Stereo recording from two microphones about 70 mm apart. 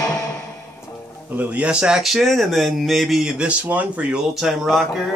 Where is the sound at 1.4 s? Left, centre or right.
Centre.